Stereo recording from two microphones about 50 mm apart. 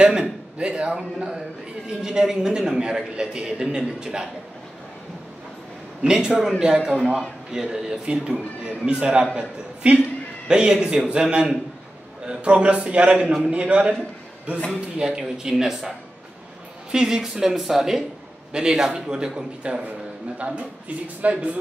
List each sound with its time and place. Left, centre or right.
0.0 s a man's voice: right
6.0 s a man's voice: centre
15.0 s a man's voice: centre
16.9 s a man's voice: centre
18.5 s a man's voice: centre